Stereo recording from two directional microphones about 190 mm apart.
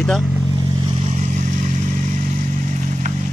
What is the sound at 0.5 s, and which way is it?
Vehicle, 25° right (ahead or behind).